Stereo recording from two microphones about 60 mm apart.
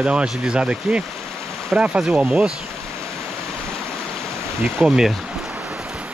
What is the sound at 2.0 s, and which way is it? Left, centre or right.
Speech, centre.